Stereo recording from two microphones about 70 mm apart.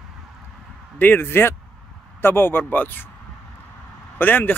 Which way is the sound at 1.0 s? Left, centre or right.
Left.